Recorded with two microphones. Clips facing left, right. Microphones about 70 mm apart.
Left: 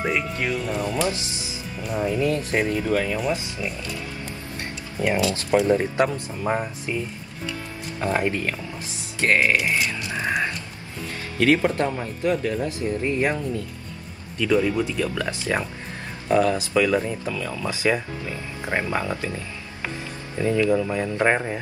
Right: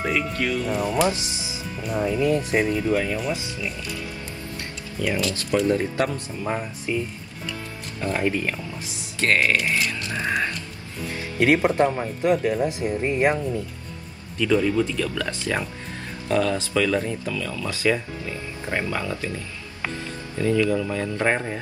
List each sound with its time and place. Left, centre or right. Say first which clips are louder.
0.0 s speech: even; centre
1.0 s speech: right 2 dB; right
1.8 s speech: right 1 dB; centre
2.1 s speech: right 2 dB; right
2.5 s speech: right 1 dB; centre
5.6 s speech: left 1 dB; left
9.2 s a sound: left 1 dB; centre
11.3 s speech: right 1 dB; centre
14.4 s speech: even; centre; by 19.3 s left
20.3 s speech: left 1 dB; left